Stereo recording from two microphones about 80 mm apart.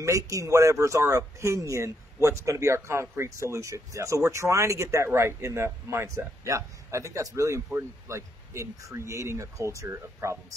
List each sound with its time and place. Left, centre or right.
0.0 s speech: right